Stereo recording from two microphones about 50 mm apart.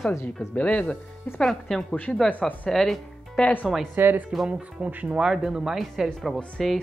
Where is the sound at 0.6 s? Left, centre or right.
Left.